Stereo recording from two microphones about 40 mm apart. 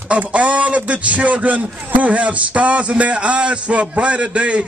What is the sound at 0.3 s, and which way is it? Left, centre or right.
A man's voice, right.